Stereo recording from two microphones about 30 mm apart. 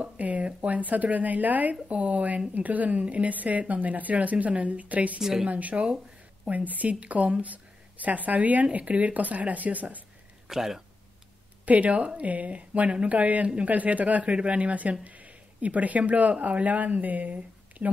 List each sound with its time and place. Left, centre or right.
0.0 s a sound: right
0.6 s speech: right
5.2 s speech: centre
5.5 s speech: right
7.4 s speech: right
10.5 s speech: centre
11.6 s speech: right
14.3 s speech: right